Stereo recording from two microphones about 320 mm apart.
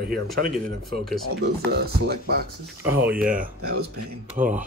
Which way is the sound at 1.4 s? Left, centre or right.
Right.